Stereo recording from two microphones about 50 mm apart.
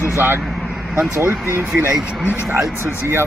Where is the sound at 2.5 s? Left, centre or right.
Right.